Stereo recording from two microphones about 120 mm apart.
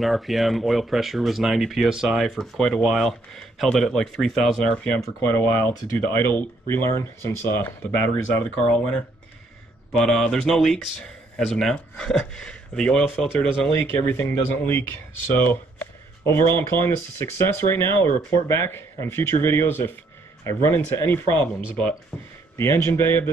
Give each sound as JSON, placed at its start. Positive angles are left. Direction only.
{"t": 0.0, "sound": "speech", "side_deg": 0}
{"t": 9.9, "sound": "speech", "side_deg": 5}
{"t": 13.7, "sound": "speech", "side_deg": 15}